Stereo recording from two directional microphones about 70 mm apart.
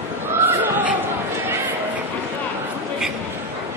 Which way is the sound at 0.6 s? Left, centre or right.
Right.